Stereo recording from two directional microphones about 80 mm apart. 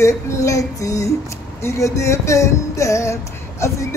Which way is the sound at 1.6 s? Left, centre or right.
Left.